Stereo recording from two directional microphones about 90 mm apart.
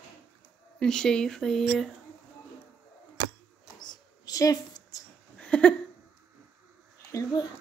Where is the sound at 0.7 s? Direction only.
10° left (ahead or behind).